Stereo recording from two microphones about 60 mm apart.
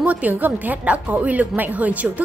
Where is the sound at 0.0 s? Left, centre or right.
Right.